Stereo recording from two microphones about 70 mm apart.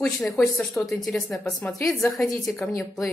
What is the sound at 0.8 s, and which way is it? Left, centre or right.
A woman's voice, centre.